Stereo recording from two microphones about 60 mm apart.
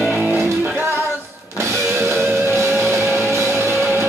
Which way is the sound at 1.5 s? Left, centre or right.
Right.